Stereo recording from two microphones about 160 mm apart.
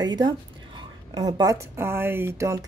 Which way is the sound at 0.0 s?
25° right (ahead or behind).